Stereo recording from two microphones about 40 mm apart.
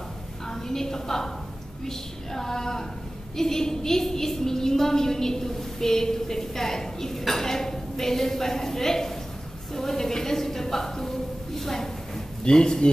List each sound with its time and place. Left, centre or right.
0.5 s a woman's voice: centre
12.4 s speech: centre